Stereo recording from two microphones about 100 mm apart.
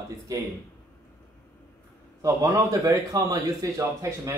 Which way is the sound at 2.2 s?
35° right (ahead or behind).